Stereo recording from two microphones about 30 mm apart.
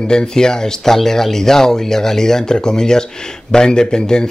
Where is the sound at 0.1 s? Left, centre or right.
Left.